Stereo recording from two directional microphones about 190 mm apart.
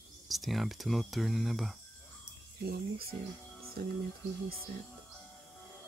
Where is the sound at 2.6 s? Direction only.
55° right (ahead or behind).